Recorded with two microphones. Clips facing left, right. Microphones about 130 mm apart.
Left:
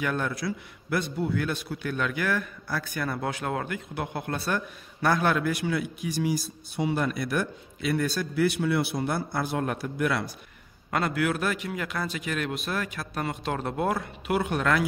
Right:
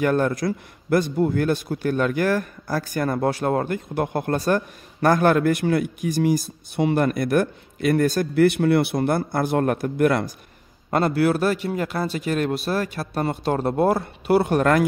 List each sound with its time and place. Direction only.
0.0 s a man's voice: 45° right (ahead or behind)
10.9 s a man's voice: 35° right (ahead or behind)